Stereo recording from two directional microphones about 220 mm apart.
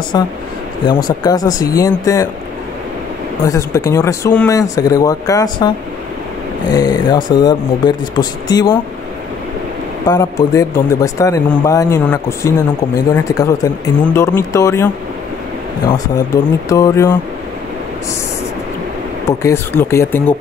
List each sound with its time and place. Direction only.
0.1 s speech: 20° left (ahead or behind)
3.4 s speech: 15° left (ahead or behind)
6.7 s speech: 15° left (ahead or behind)
10.0 s speech: 15° left (ahead or behind)
16.6 s speech: 15° left (ahead or behind)
19.2 s speech: 10° left (ahead or behind)